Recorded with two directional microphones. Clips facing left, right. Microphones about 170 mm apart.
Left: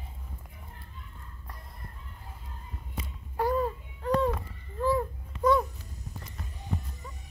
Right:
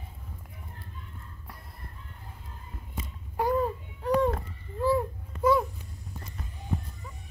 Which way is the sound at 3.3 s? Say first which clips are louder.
Right 1 dB; 15° right (ahead or behind).